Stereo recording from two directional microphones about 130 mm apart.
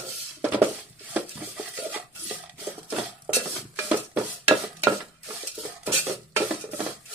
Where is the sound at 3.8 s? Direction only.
10° right (ahead or behind).